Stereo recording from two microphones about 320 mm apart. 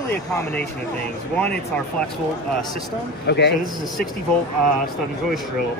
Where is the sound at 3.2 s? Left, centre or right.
Left.